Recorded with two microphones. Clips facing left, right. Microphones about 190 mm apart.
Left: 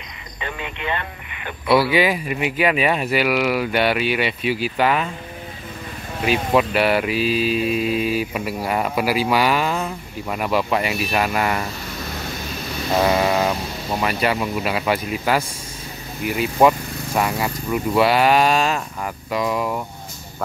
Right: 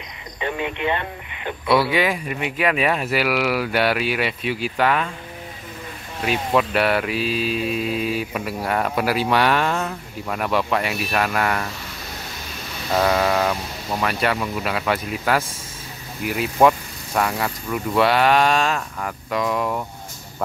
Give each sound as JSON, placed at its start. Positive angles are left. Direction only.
{"t": 0.4, "sound": "speech", "side_deg": -20}
{"t": 1.7, "sound": "mantra", "side_deg": 0}
{"t": 6.2, "sound": "mantra", "side_deg": 5}
{"t": 13.0, "sound": "speech", "side_deg": 5}
{"t": 16.3, "sound": "mantra", "side_deg": 0}